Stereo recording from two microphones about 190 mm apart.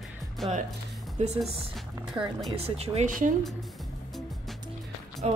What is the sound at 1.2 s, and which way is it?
Speech, 35° right (ahead or behind).